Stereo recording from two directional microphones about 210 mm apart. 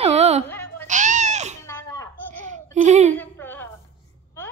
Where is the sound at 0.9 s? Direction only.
35° right (ahead or behind).